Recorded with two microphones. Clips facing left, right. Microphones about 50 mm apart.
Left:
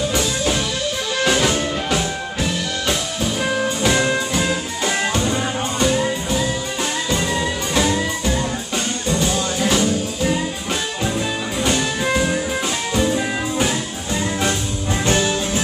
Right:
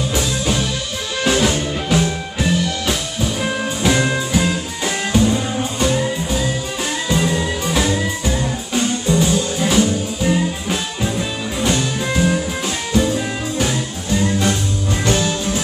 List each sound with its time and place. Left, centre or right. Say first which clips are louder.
0.1 s music: even; centre
14.4 s music: right 2 dB; centre